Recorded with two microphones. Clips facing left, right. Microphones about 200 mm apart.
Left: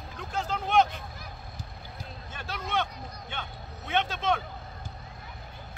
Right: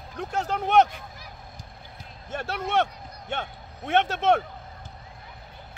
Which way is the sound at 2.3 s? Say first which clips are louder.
Right 7 dB; 70° right (ahead or behind).